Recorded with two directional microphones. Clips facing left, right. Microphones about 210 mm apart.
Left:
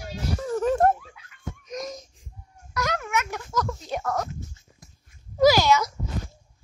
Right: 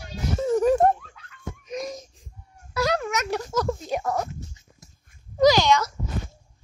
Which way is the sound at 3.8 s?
10° right (ahead or behind).